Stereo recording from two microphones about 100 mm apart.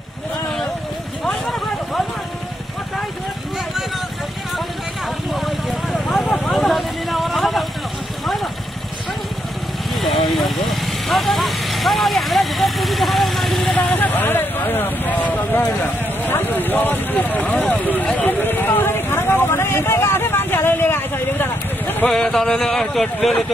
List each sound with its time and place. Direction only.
1.3 s vehicle: 5° left (ahead or behind)
5.3 s vehicle: centre (ahead or behind)
9.9 s vehicle: centre (ahead or behind)
13.9 s vehicle: 15° left (ahead or behind)
22.1 s speech: 5° left (ahead or behind)